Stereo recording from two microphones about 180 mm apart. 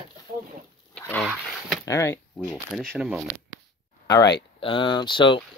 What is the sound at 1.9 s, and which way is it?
Speech, 15° left (ahead or behind).